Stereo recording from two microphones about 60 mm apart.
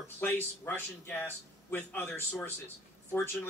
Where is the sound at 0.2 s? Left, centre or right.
Left.